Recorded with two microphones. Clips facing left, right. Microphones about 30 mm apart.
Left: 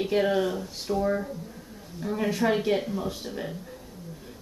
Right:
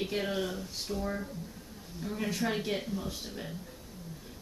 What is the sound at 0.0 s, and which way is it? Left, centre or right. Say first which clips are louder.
Speech: left 9 dB; centre.